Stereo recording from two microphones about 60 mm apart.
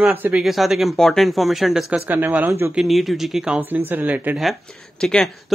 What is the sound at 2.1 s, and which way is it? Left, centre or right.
Speech, right.